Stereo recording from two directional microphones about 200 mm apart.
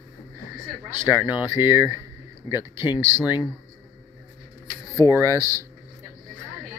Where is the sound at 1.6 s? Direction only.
20° left (ahead or behind).